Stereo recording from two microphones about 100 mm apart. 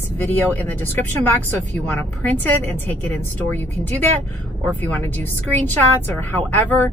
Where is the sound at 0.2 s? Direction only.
20° left (ahead or behind).